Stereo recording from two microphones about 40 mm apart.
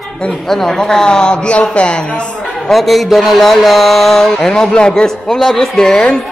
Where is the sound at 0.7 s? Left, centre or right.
Centre.